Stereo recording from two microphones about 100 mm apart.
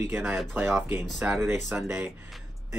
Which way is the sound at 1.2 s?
20° right (ahead or behind).